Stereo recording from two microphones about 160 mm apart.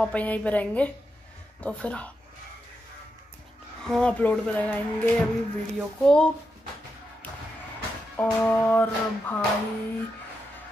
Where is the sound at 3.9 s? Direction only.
5° left (ahead or behind).